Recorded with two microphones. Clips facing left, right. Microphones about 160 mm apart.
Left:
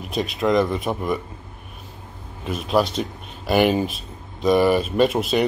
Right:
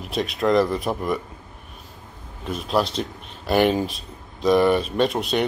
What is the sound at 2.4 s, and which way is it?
Speech, centre (ahead or behind).